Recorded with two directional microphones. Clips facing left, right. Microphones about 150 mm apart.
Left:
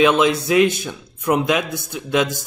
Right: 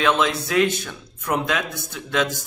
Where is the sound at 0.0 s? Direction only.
15° left (ahead or behind).